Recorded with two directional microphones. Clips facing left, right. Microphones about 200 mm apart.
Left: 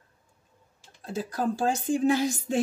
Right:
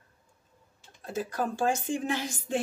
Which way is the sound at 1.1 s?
35° left (ahead or behind).